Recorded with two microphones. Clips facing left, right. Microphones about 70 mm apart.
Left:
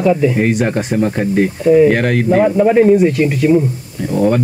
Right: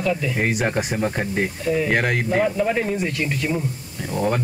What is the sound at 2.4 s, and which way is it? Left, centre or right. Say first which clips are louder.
A man's voice: left 11 dB; left.